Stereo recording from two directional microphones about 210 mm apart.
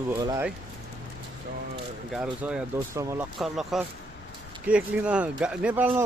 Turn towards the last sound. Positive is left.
turn(degrees=-5)  # may be behind; listen again after turning